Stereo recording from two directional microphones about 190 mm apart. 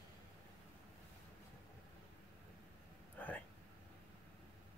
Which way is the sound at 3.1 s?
10° left (ahead or behind).